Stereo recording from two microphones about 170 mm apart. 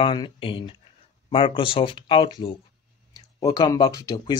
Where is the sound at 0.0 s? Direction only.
30° left (ahead or behind).